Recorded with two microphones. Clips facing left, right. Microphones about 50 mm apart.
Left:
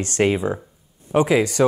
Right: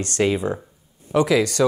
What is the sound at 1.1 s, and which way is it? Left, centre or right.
Speech, left.